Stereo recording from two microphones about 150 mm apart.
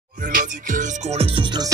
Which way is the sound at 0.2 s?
65° right (ahead or behind).